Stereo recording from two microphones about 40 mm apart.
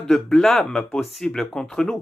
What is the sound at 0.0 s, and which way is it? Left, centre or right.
Speech, centre.